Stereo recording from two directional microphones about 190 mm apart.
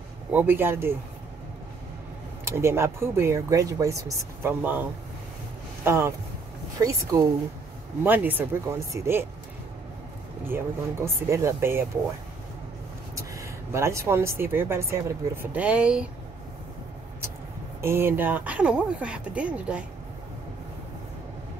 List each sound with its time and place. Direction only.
0.3 s speech: 10° right (ahead or behind)
2.4 s speech: 15° right (ahead or behind)
5.9 s speech: 15° right (ahead or behind)
10.5 s speech: 15° right (ahead or behind)
13.1 s speech: 15° right (ahead or behind)
17.8 s speech: 10° right (ahead or behind)